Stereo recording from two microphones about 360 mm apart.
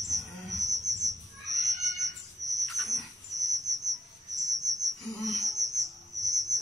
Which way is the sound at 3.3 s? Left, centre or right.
Right.